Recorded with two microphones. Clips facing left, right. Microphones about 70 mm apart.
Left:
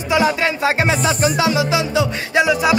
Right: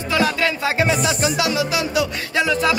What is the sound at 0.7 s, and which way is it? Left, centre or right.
Music, left.